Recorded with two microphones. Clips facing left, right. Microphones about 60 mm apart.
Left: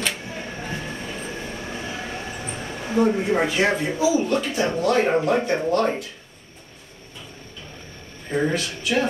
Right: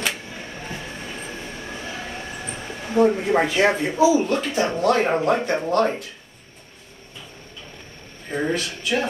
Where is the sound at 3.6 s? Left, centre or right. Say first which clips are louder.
Right 3 dB; right.